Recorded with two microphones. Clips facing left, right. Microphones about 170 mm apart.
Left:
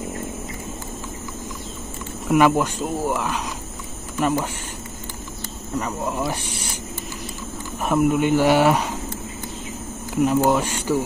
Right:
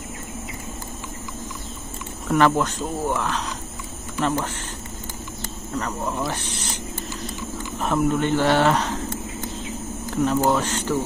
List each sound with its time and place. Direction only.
2.2 s speech: 10° left (ahead or behind)
5.8 s speech: 10° left (ahead or behind)
7.8 s speech: 10° left (ahead or behind)
10.1 s speech: 10° left (ahead or behind)